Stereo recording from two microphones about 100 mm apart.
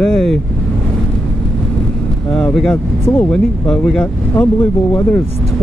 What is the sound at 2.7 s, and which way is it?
Speech, 20° left (ahead or behind).